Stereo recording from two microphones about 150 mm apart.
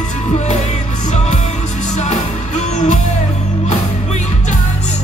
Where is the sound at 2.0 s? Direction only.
50° left (ahead or behind).